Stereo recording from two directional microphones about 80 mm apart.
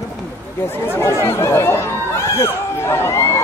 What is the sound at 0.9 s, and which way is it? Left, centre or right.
Speech, left.